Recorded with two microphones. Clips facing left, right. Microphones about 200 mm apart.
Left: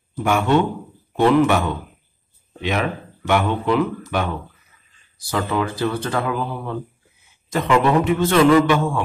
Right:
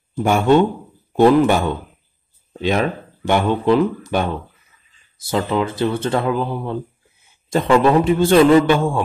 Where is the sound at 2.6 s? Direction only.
30° right (ahead or behind).